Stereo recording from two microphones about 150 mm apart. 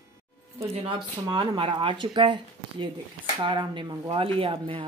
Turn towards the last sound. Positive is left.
turn(degrees=-35)  # may be behind; listen again after turning